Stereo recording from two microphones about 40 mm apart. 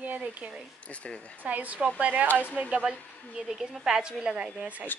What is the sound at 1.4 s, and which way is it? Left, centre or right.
Speech, right.